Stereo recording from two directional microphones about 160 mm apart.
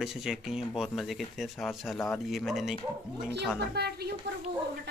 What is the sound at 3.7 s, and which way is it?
Speech, 90° right.